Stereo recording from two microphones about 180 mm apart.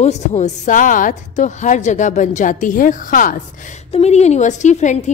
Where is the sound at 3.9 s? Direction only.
35° left (ahead or behind).